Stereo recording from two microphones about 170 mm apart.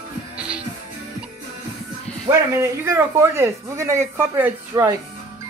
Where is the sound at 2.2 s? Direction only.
15° right (ahead or behind).